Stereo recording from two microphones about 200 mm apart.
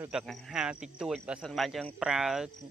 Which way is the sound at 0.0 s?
5° right (ahead or behind).